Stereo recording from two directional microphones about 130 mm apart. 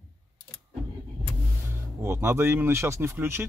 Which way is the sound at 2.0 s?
20° right (ahead or behind).